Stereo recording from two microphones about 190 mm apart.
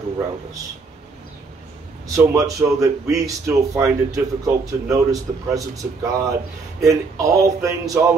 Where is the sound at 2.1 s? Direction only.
15° right (ahead or behind).